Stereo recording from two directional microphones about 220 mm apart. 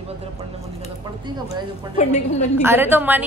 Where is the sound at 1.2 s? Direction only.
20° right (ahead or behind).